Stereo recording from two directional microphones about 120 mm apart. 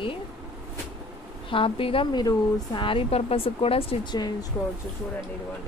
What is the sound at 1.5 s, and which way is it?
A woman's voice, 50° left (ahead or behind).